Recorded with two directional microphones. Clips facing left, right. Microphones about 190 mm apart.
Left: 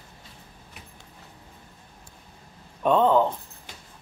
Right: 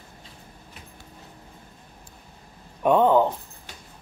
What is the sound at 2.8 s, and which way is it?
Speech, 15° right (ahead or behind).